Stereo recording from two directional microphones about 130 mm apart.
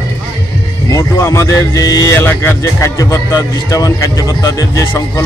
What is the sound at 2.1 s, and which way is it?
Speech, 20° left (ahead or behind).